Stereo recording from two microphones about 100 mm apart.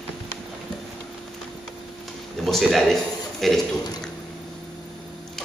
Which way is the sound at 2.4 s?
Centre (ahead or behind).